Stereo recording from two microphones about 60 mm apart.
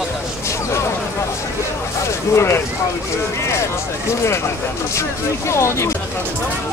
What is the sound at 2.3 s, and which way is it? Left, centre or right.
Speech, left.